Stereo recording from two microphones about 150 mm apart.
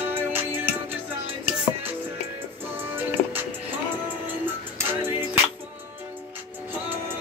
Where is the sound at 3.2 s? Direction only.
50° left (ahead or behind).